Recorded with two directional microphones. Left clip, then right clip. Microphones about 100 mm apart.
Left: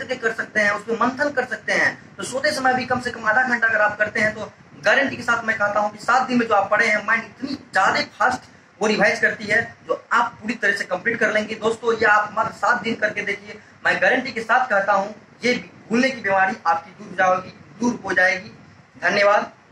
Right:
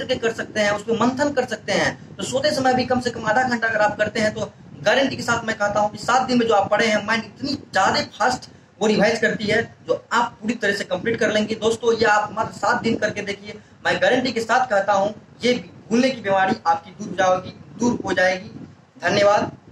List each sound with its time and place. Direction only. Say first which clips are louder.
0.0 s a man's voice: right 1 dB; 45° right (ahead or behind)
1.1 s a man's voice: right 1 dB; 50° right (ahead or behind)